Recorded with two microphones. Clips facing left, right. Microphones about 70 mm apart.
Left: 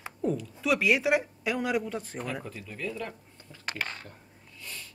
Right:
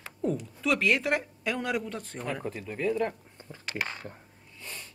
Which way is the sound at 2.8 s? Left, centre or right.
Right.